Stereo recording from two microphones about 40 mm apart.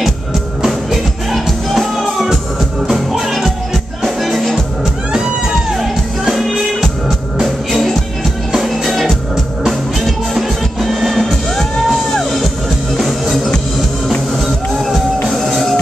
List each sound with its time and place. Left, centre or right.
0.6 s music: centre
1.3 s music: centre
5.1 s music: centre
9.0 s music: centre
9.7 s music: centre